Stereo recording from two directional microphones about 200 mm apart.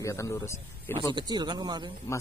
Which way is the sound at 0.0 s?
15° left (ahead or behind).